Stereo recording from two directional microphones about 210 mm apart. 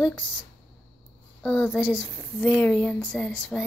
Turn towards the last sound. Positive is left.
turn(degrees=0)  # may be behind; listen again after turning